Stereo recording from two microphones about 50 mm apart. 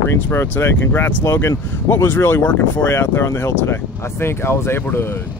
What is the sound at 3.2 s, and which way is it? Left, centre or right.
Speech, left.